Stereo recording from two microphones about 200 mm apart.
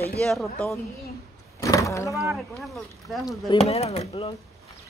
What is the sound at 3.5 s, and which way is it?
Speech, 30° left (ahead or behind).